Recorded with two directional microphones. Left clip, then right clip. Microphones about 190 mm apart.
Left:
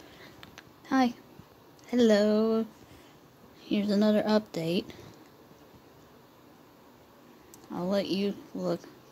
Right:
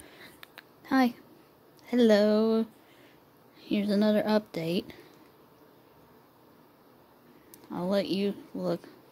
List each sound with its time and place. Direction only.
0.2 s a sound: 20° right (ahead or behind)
1.9 s speech: 15° right (ahead or behind)
7.7 s speech: 15° right (ahead or behind)